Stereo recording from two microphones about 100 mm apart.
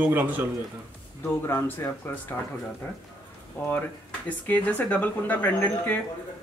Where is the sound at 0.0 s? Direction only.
15° right (ahead or behind).